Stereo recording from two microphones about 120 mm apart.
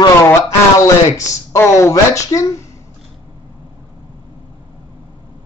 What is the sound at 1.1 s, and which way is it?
Speech, 25° left (ahead or behind).